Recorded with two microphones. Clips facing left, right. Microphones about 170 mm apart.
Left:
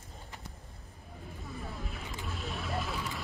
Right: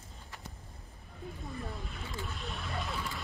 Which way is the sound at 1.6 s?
Centre (ahead or behind).